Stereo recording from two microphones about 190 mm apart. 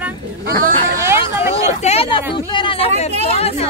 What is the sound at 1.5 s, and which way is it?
Speech, 30° left (ahead or behind).